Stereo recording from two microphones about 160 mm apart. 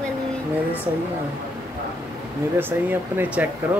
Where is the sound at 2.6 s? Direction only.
15° right (ahead or behind).